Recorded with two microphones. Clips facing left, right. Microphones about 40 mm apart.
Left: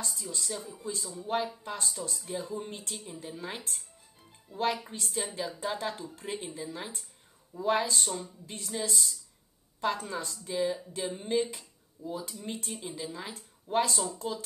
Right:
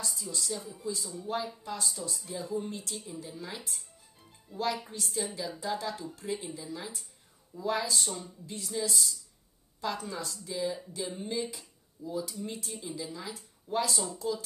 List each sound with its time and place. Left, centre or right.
0.0 s speech: left